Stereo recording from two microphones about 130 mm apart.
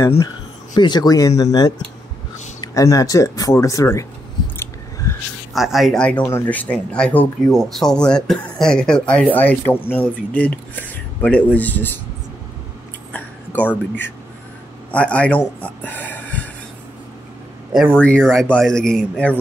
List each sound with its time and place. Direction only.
0.7 s speech: 35° left (ahead or behind)
4.6 s a sound: 20° left (ahead or behind)
5.5 s speech: centre (ahead or behind)
6.2 s speech: 15° left (ahead or behind)
13.1 s a sound: 10° left (ahead or behind)
14.9 s speech: 10° left (ahead or behind)
15.6 s snort: 15° left (ahead or behind)
17.9 s speech: 5° left (ahead or behind)